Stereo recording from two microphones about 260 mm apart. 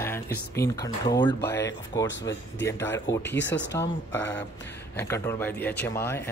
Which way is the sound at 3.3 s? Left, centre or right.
Left.